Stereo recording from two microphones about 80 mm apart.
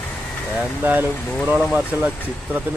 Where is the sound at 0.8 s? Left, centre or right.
Right.